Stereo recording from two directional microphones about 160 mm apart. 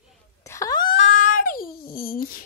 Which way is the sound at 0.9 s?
50° left (ahead or behind).